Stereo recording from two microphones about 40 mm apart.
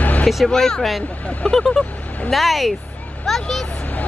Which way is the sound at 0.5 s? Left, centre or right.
Centre.